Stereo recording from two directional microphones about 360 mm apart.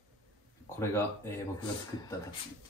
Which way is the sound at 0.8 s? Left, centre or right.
Centre.